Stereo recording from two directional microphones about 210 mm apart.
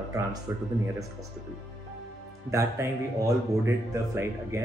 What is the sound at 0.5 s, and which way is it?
Speech, 10° right (ahead or behind).